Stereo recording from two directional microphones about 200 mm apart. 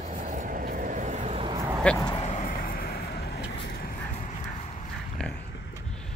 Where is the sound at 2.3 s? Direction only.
40° left (ahead or behind).